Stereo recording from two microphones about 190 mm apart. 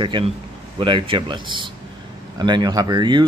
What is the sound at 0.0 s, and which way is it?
Speech, 25° right (ahead or behind).